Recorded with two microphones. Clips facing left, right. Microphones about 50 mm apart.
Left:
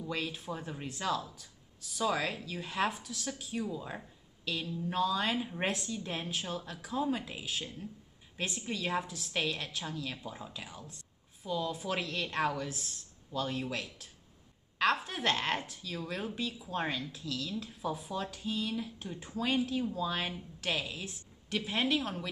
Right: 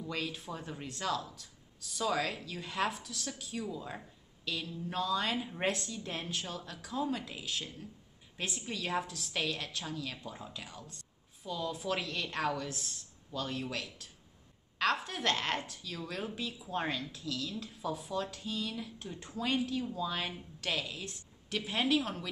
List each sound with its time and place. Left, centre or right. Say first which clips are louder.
0.6 s a woman's voice: left 1 dB; centre
8.5 s a woman's voice: left 2 dB; centre
9.7 s a woman's voice: left 1 dB; centre
16.2 s a woman's voice: left 2 dB; centre